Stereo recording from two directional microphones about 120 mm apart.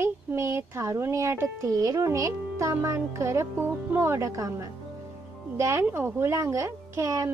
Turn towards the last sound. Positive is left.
turn(degrees=-25)  # may be behind; listen again after turning